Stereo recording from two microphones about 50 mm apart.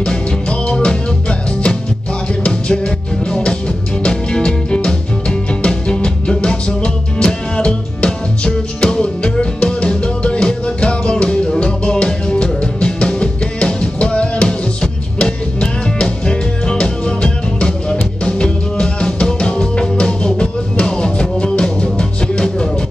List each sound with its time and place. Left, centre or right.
0.0 s music: centre
3.3 s music: centre